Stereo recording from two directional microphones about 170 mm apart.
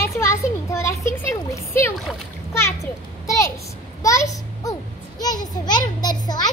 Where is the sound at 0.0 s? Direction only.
15° left (ahead or behind).